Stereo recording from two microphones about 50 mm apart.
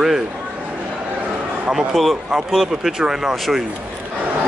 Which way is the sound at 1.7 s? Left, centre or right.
Centre.